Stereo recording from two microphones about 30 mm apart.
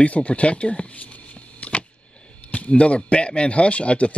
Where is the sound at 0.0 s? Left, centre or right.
Left.